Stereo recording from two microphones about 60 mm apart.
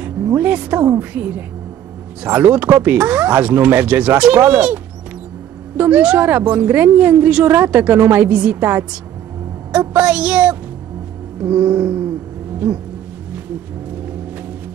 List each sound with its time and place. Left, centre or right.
0.2 s music: right
0.5 s a woman's voice: right
2.2 s a woman's voice: right
5.8 s a woman's voice: right
9.7 s music: right
11.4 s speech: right